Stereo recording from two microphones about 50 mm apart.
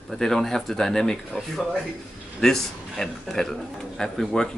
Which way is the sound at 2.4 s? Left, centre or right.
Centre.